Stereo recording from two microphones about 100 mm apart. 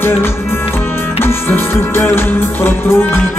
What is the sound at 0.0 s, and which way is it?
Music, 25° left (ahead or behind).